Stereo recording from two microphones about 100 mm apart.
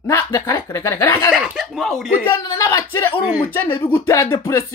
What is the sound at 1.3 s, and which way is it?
Speech, 10° right (ahead or behind).